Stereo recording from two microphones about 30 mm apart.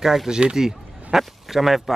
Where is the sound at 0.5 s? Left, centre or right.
Centre.